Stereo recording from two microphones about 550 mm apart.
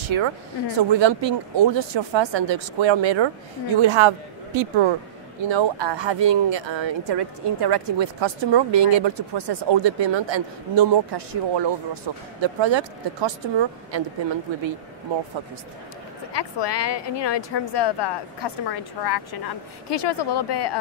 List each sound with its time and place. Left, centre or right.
0.0 s speech: right
16.3 s a woman's voice: left